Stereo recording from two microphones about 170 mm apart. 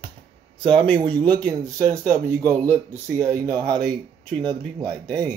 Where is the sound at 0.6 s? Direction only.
5° left (ahead or behind).